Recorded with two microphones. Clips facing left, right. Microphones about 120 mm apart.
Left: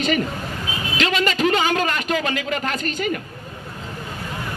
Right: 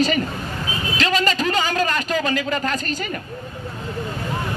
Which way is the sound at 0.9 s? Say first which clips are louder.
Even; 35° right (ahead or behind).